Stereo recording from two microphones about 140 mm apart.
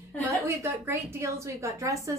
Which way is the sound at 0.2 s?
15° right (ahead or behind).